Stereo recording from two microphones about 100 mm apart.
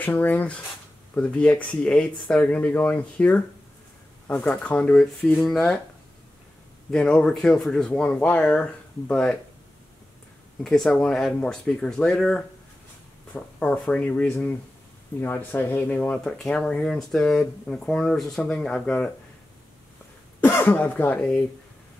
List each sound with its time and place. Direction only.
0.0 s speech: 15° left (ahead or behind)
6.9 s speech: 10° left (ahead or behind)
10.6 s speech: 5° left (ahead or behind)
20.3 s speech: 20° left (ahead or behind)